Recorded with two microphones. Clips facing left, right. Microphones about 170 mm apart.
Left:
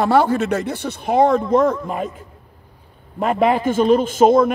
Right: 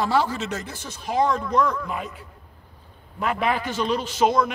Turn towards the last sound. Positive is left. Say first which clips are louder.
# left 8 dB
turn(degrees=50)  # may be behind; listen again after turning